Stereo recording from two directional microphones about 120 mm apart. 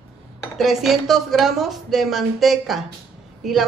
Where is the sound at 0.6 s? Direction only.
Centre (ahead or behind).